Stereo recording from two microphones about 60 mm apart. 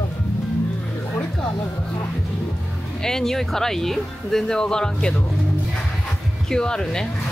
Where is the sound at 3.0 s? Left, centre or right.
Centre.